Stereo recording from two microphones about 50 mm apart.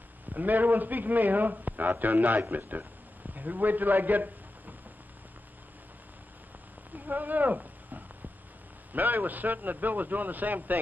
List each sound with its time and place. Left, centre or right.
0.3 s a man's voice: right
6.9 s a sound: right
8.9 s a man's voice: right